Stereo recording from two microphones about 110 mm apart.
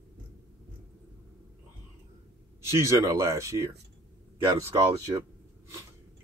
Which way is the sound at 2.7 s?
25° right (ahead or behind).